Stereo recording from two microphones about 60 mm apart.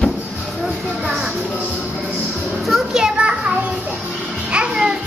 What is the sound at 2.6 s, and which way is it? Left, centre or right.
Children playing, centre.